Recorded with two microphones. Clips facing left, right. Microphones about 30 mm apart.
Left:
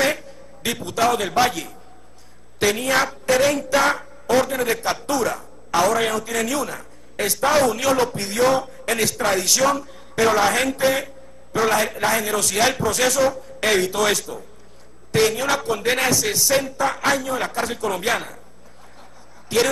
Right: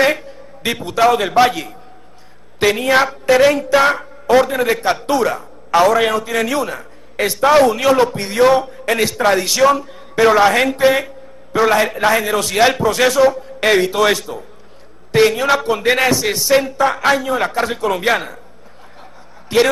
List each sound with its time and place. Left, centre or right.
0.0 s a man's voice: right
19.5 s a woman's voice: right